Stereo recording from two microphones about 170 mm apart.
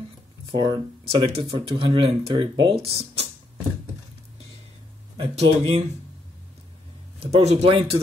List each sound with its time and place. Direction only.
0.5 s speech: 30° right (ahead or behind)
5.1 s speech: 35° right (ahead or behind)
7.2 s speech: 40° right (ahead or behind)